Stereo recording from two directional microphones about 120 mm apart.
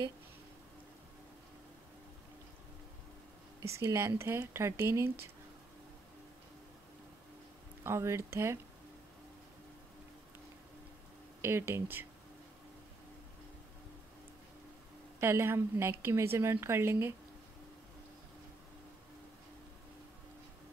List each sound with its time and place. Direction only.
3.7 s a woman's voice: 20° right (ahead or behind)
7.8 s a woman's voice: 25° right (ahead or behind)
11.4 s a woman's voice: 20° right (ahead or behind)
15.1 s a woman's voice: 20° right (ahead or behind)